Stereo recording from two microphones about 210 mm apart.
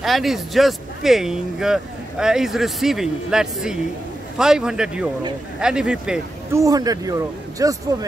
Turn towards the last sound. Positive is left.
turn(degrees=-15)  # may be behind; listen again after turning